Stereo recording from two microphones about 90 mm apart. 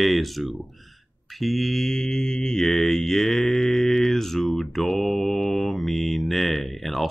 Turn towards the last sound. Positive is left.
turn(degrees=0)  # may be behind; listen again after turning